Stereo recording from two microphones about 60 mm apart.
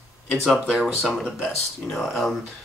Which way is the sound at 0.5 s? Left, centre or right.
Centre.